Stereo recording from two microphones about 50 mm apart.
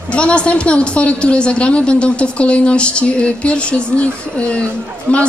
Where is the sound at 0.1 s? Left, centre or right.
Left.